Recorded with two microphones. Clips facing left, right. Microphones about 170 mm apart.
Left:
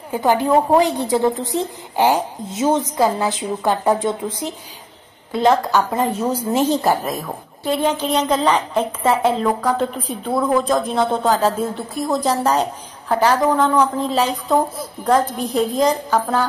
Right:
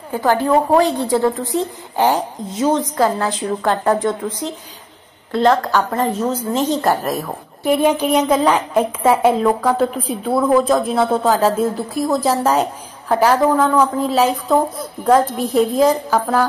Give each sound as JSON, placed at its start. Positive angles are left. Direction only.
{"t": 0.1, "sound": "a woman's voice", "side_deg": 15}
{"t": 7.6, "sound": "a woman's voice", "side_deg": -10}